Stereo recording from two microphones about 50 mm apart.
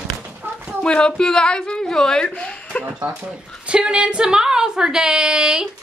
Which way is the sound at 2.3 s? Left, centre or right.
Left.